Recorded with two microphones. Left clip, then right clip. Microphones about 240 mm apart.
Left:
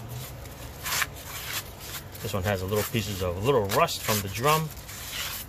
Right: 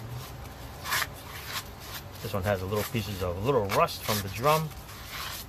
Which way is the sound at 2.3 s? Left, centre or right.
Left.